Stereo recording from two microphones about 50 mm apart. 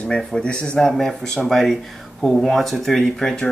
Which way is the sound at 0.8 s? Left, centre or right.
Centre.